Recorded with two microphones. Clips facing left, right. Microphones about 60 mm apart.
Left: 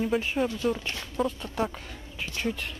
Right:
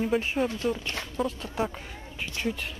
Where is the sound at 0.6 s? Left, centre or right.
Centre.